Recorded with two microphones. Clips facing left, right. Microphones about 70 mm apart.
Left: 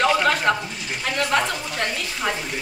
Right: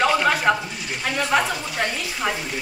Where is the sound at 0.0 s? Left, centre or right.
Centre.